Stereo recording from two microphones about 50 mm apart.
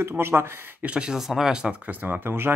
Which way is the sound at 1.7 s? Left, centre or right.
Right.